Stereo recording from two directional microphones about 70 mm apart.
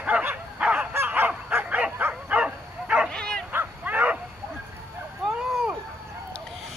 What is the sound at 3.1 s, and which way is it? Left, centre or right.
Bow-wow, centre.